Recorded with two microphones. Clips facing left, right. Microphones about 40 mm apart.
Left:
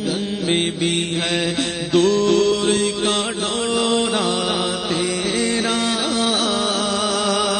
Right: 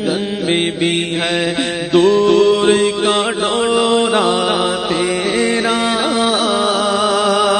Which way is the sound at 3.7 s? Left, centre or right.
Centre.